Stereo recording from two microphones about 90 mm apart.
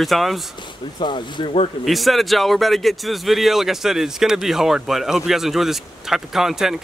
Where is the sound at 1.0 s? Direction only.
60° left (ahead or behind).